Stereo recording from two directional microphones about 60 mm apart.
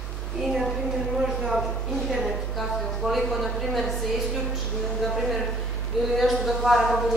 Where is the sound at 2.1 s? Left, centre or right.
Centre.